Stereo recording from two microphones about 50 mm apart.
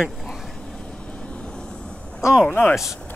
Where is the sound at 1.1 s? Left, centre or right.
Left.